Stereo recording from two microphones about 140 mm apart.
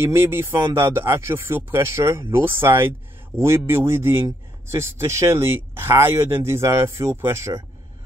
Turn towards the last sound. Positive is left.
turn(degrees=-20)  # may be behind; listen again after turning